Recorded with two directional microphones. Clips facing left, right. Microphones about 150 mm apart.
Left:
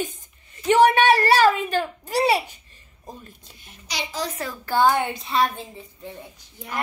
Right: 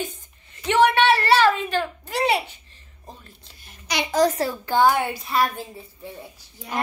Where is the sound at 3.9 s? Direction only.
55° right (ahead or behind); by 4.6 s 35° right (ahead or behind).